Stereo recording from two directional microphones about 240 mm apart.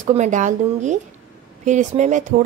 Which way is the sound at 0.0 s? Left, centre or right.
Right.